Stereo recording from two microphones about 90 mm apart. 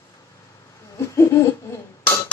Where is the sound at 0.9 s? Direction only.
35° left (ahead or behind).